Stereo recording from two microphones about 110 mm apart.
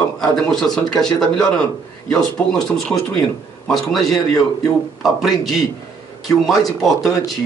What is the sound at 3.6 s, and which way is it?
Speech, centre (ahead or behind).